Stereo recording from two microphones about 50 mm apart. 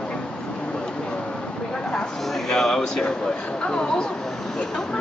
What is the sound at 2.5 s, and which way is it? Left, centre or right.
Speech, centre.